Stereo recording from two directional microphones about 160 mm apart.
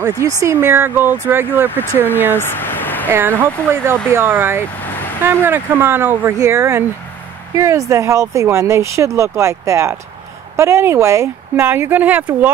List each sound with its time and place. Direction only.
0.0 s speech: 20° right (ahead or behind)
1.7 s speech: 10° left (ahead or behind)
2.3 s a sound: 15° left (ahead or behind)
3.1 s speech: 15° right (ahead or behind)